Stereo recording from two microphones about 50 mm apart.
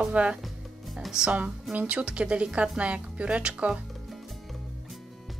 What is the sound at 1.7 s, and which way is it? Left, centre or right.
Speech, right.